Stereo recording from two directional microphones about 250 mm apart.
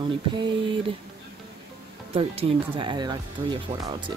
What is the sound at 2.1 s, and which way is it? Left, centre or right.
Speech, right.